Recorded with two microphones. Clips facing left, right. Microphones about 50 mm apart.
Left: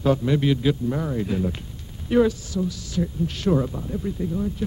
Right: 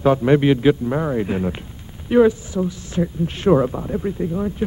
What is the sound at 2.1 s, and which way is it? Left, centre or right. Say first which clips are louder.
Speech: right 5 dB; right.